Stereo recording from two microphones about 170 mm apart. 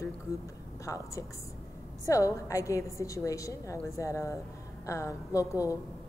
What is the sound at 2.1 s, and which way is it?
A woman's voice, 20° left (ahead or behind).